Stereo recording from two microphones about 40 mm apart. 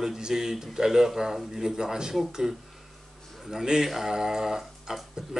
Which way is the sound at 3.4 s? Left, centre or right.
Centre.